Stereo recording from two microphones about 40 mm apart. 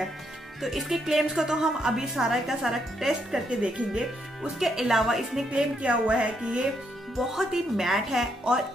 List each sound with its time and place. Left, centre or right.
0.6 s a woman's voice: centre
3.4 s speech: right
3.9 s a woman's voice: centre
5.8 s speech: right
7.2 s a woman's voice: centre